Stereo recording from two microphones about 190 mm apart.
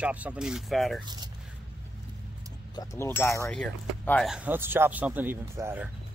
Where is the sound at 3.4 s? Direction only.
5° left (ahead or behind).